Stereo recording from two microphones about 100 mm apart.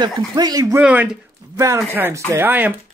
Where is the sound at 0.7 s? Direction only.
15° right (ahead or behind).